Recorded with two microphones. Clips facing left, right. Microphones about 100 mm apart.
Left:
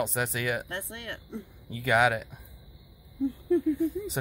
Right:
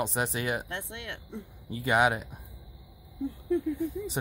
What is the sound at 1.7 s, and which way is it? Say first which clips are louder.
Speech: left 1 dB; 30° right (ahead or behind).